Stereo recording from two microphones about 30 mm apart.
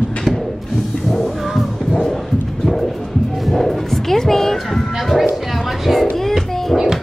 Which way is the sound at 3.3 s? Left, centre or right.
Centre.